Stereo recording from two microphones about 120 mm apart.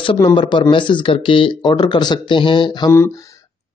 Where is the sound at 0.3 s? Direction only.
40° left (ahead or behind).